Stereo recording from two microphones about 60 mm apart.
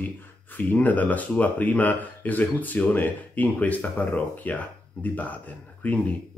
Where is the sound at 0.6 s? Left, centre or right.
Left.